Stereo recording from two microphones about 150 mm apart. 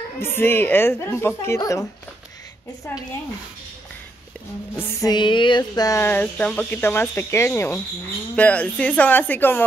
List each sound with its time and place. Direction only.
0.2 s speech: 15° left (ahead or behind)
5.0 s speech: 30° left (ahead or behind); by 9.7 s 15° left (ahead or behind)